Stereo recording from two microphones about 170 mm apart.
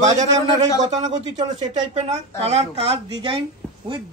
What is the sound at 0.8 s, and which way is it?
A man's voice, 45° right (ahead or behind).